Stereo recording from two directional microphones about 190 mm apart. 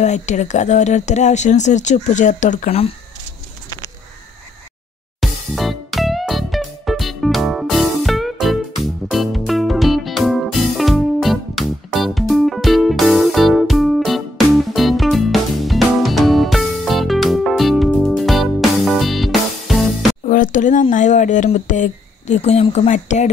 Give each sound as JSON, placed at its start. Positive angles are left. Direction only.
{"t": 0.0, "sound": "speech", "side_deg": 40}
{"t": 5.2, "sound": "music", "side_deg": 0}
{"t": 20.2, "sound": "a sound", "side_deg": 45}
{"t": 20.9, "sound": "speech", "side_deg": 40}